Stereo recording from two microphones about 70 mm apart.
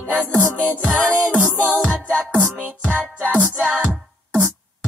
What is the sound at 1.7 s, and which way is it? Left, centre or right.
Music, centre.